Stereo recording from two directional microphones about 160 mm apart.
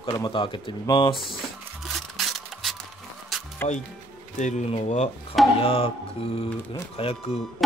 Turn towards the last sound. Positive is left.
turn(degrees=35)  # may be behind; listen again after turning